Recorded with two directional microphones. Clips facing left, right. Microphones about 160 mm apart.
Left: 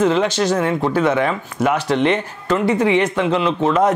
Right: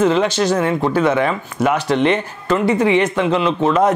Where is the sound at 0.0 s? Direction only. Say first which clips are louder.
Right 1 dB; 10° right (ahead or behind).